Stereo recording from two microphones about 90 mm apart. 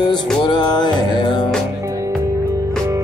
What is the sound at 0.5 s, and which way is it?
Music, 55° left (ahead or behind).